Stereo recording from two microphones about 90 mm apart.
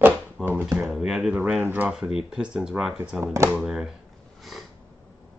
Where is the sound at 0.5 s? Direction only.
30° right (ahead or behind).